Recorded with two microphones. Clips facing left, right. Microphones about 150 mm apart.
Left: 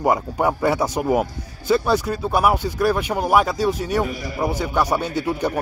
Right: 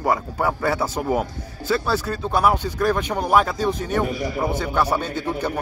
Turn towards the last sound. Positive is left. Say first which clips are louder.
# left 3 dB
turn(degrees=10)  # may be behind; listen again after turning